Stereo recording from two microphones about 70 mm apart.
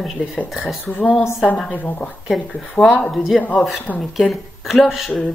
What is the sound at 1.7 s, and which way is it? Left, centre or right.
Speech, left.